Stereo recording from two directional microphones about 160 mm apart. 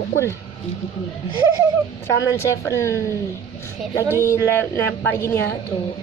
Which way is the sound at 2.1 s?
15° left (ahead or behind).